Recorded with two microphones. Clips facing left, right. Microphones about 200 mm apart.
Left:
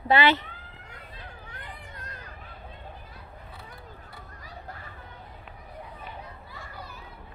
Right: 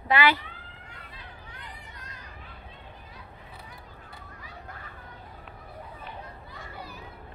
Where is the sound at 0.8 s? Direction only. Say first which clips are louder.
Left 4 dB; 50° left (ahead or behind).